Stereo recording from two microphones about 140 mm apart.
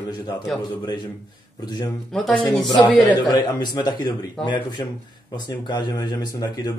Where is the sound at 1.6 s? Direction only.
30° left (ahead or behind).